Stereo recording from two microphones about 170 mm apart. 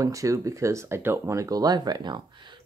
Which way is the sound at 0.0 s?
20° right (ahead or behind).